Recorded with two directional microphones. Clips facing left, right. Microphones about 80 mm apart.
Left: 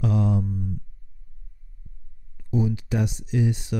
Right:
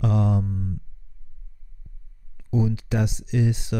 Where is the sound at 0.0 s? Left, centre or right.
Right.